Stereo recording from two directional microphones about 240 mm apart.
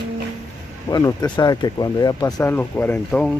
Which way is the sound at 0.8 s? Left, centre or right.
Centre.